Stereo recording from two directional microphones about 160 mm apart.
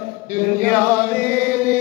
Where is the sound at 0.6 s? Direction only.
10° left (ahead or behind).